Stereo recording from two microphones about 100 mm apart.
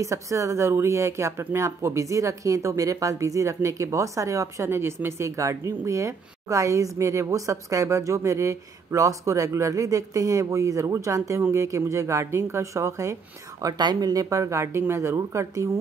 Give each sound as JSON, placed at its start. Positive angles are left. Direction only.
{"t": 0.0, "sound": "speech", "side_deg": -30}